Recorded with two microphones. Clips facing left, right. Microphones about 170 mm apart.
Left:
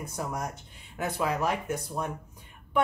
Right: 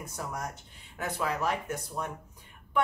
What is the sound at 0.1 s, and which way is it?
Speech, 15° left (ahead or behind).